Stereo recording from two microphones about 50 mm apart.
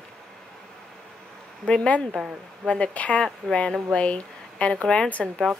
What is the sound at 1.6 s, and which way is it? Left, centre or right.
Speech, centre.